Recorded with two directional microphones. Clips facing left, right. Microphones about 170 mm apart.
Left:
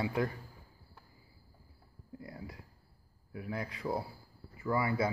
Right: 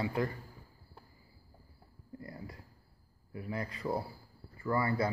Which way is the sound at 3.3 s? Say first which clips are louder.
Even; centre (ahead or behind).